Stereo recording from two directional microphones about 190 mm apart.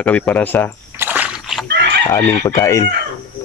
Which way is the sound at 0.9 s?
10° right (ahead or behind).